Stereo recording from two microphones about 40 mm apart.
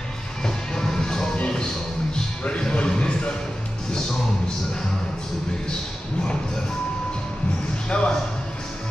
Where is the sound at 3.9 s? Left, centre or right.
Centre.